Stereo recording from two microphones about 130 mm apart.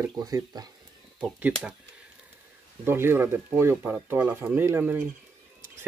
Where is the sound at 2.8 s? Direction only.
20° right (ahead or behind).